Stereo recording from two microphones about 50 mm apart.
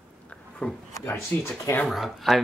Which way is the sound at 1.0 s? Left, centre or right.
Left.